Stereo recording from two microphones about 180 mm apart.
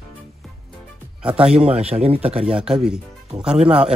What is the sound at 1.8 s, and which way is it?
Speech, 35° right (ahead or behind).